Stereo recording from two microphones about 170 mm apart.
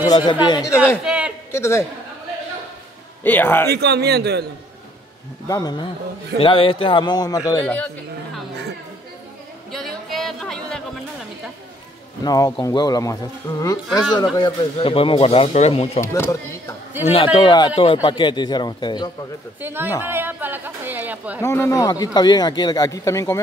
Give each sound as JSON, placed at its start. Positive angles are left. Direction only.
{"t": 0.0, "sound": "a man's voice", "side_deg": 25}
{"t": 0.7, "sound": "a man's voice", "side_deg": -5}
{"t": 1.5, "sound": "speech", "side_deg": 15}
{"t": 3.3, "sound": "speech", "side_deg": 10}
{"t": 3.7, "sound": "a man's voice", "side_deg": -75}
{"t": 5.5, "sound": "a man's voice", "side_deg": 25}
{"t": 7.6, "sound": "speech", "side_deg": 10}
{"t": 9.7, "sound": "music", "side_deg": 0}
{"t": 12.3, "sound": "a man's voice", "side_deg": 20}
{"t": 16.0, "sound": "speech", "side_deg": 15}
{"t": 17.0, "sound": "a man's voice", "side_deg": 30}
{"t": 19.6, "sound": "a woman's voice", "side_deg": -15}
{"t": 21.4, "sound": "a man's voice", "side_deg": 15}